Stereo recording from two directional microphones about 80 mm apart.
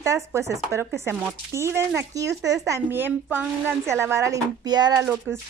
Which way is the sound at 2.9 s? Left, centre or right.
Right.